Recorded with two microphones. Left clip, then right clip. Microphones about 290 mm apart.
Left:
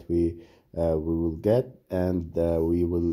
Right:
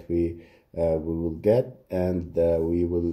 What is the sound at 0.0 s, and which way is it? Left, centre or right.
Speech, left.